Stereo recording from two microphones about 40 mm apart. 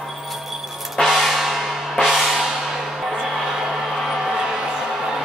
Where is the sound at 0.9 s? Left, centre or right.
Centre.